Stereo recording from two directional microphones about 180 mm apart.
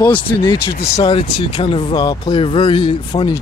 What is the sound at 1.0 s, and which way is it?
Speech, 30° left (ahead or behind).